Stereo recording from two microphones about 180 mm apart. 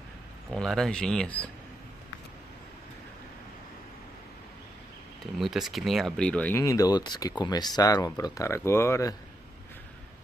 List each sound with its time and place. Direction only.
0.5 s speech: centre (ahead or behind)
5.2 s speech: centre (ahead or behind)
6.6 s speech: 20° left (ahead or behind)